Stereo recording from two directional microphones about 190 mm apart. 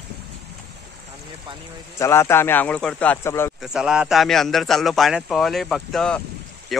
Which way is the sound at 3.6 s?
5° right (ahead or behind).